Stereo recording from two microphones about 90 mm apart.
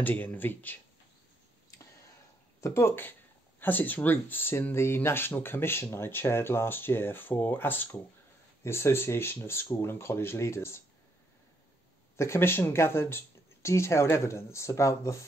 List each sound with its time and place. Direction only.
0.0 s speech: 20° left (ahead or behind)
2.6 s speech: 30° left (ahead or behind)
12.2 s speech: 30° left (ahead or behind)